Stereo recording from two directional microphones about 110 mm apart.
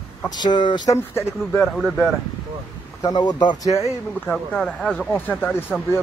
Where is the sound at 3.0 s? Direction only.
40° left (ahead or behind).